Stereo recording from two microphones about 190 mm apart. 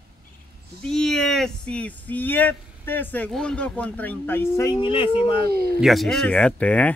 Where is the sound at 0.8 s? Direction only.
5° left (ahead or behind).